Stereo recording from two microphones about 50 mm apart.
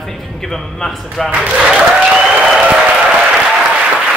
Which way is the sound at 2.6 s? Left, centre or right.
Centre.